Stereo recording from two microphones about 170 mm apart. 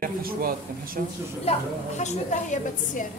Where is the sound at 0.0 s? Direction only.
55° right (ahead or behind).